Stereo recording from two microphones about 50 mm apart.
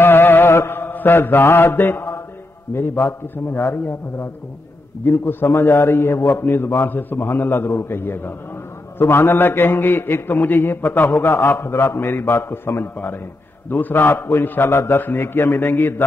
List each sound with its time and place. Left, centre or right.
0.0 s mantra: left
2.7 s a man's voice: left
3.7 s a man's voice: left
5.6 s a man's voice: left
11.6 s a man's voice: left
12.2 s a man's voice: left
12.9 s a man's voice: left
13.9 s a man's voice: left